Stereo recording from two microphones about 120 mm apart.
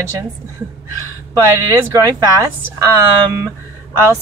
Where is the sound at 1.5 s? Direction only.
25° right (ahead or behind).